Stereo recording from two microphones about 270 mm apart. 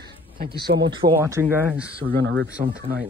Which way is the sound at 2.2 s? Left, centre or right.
Right.